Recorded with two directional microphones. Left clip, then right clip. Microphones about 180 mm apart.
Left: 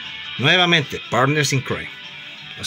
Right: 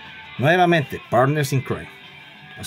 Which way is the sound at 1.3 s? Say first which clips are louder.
Left 4 dB; 40° right (ahead or behind).